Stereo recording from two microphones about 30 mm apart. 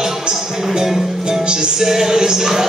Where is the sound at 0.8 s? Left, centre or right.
Centre.